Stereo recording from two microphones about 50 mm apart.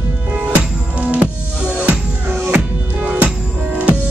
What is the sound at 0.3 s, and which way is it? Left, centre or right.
Music, right.